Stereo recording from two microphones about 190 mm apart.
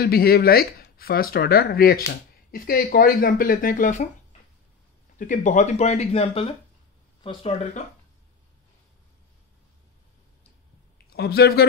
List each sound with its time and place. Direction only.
0.0 s speech: 55° left (ahead or behind)
5.2 s speech: 40° left (ahead or behind)
11.1 s speech: 55° left (ahead or behind)